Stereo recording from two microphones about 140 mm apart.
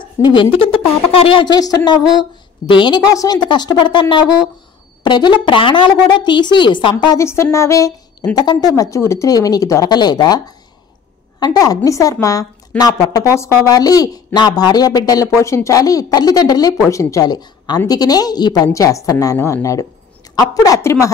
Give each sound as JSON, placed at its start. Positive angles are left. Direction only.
{"t": 0.2, "sound": "a woman's voice", "side_deg": 35}
{"t": 7.2, "sound": "a woman's voice", "side_deg": 20}